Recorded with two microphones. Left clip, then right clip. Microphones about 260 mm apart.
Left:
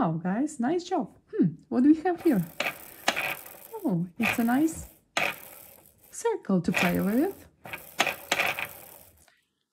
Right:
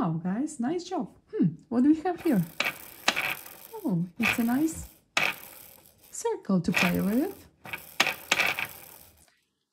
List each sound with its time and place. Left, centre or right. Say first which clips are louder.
0.0 s speech: left 3 dB; centre
1.9 s speech: left 3 dB; right
2.6 s mechanisms: right 1 dB; centre
3.9 s speech: right 2 dB; centre
6.1 s a sound: left 2 dB; centre
6.4 s speech: left 1 dB; centre
6.7 s a sound: even; centre